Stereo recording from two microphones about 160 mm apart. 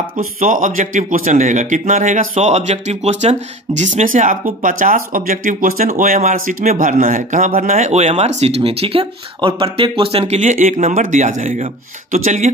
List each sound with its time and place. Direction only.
0.4 s a man's voice: 55° right (ahead or behind)